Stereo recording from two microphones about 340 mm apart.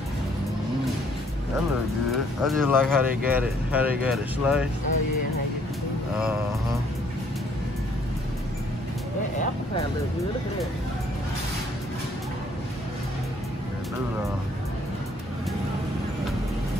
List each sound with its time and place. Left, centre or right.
2.0 s speech: centre